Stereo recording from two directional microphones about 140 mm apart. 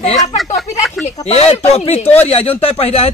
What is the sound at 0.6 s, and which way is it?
Speech, centre (ahead or behind).